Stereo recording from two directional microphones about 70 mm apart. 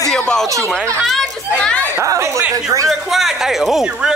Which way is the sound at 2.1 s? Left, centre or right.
Right.